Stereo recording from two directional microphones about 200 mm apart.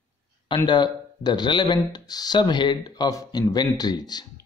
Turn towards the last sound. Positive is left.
turn(degrees=20)  # may be behind; listen again after turning